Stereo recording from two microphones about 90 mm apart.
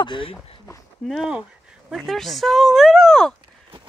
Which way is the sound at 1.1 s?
Centre (ahead or behind).